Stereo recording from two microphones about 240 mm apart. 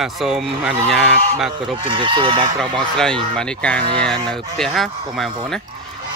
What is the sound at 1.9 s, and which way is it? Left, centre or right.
Speech, centre.